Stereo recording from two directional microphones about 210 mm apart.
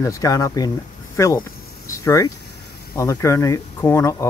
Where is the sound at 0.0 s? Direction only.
15° left (ahead or behind).